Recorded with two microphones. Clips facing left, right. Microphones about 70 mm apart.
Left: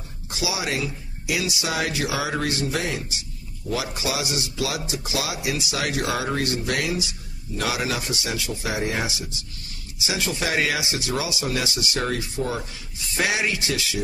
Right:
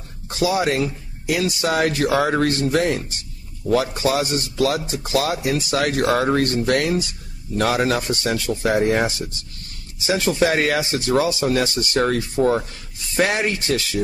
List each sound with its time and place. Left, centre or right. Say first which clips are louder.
0.3 s a man's voice: right 8 dB; right